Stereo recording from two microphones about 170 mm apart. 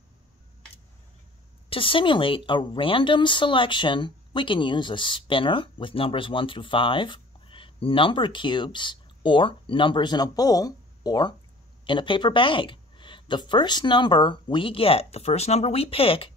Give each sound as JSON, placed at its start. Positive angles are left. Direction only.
{"t": 1.7, "sound": "speech", "side_deg": 30}